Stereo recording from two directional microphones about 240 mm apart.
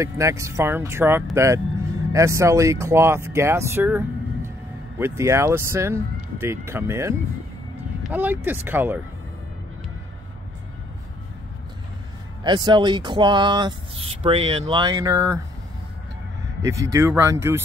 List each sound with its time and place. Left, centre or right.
0.0 s speech: centre
12.4 s speech: centre
16.6 s speech: centre